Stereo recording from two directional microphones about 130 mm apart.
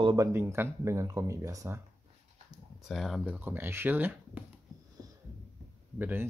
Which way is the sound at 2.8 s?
Centre (ahead or behind).